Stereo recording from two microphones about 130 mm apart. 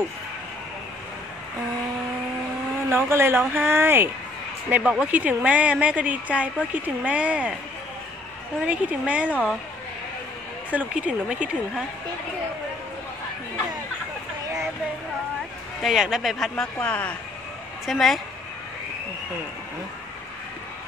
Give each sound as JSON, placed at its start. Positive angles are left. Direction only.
{"t": 2.9, "sound": "a woman's voice", "side_deg": -20}
{"t": 8.6, "sound": "a woman's voice", "side_deg": -10}
{"t": 10.7, "sound": "a woman's voice", "side_deg": -10}
{"t": 15.8, "sound": "speech", "side_deg": 0}